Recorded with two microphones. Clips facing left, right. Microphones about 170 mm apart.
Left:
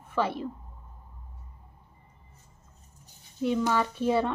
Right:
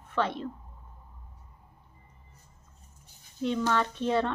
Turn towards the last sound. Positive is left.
turn(degrees=10)  # may be behind; listen again after turning